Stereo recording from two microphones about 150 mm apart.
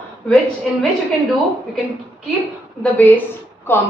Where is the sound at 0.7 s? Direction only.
Centre (ahead or behind).